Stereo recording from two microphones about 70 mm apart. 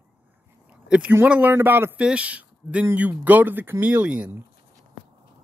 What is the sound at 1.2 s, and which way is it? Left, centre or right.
Speech, right.